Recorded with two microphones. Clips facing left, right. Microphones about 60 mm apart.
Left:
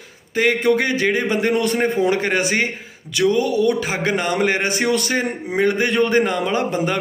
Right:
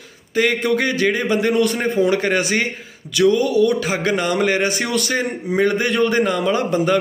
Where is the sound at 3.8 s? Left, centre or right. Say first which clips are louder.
Right 1 dB; left.